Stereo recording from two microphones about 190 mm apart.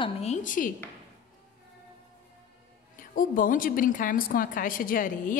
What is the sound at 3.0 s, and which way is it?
A woman's voice, 45° left (ahead or behind).